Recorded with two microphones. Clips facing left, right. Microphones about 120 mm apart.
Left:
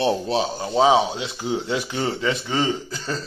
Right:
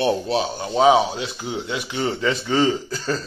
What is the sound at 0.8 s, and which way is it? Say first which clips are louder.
Speech: right 1 dB; 25° left (ahead or behind).